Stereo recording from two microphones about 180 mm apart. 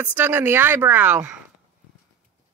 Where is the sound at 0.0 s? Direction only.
10° right (ahead or behind).